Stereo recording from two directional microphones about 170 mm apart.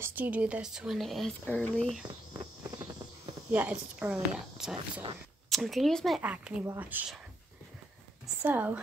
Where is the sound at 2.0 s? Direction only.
25° right (ahead or behind).